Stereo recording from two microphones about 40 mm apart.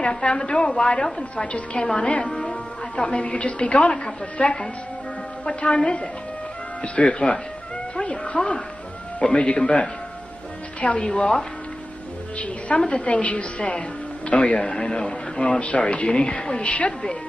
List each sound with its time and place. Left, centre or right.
0.0 s a woman's voice: left
11.0 s a woman's voice: left
12.7 s a woman's voice: left